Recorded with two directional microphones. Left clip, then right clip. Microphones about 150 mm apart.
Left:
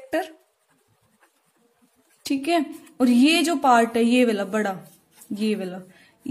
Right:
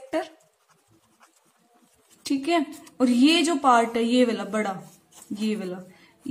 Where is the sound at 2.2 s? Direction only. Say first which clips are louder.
Left 1 dB; 25° left (ahead or behind).